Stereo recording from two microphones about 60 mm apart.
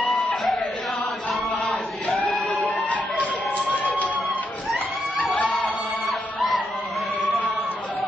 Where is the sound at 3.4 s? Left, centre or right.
Left.